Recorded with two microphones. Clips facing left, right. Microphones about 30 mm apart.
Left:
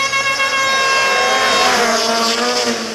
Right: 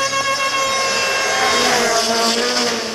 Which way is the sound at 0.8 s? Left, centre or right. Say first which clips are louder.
Left 4 dB; centre.